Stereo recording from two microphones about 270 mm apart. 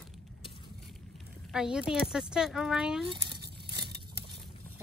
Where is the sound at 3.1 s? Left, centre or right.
Centre.